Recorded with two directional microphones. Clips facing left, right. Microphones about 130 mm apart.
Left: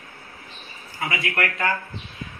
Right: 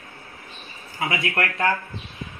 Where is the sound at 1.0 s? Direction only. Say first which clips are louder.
Right 1 dB; centre (ahead or behind).